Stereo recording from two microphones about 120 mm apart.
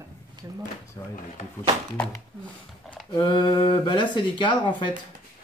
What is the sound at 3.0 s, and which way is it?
Speech, 40° left (ahead or behind).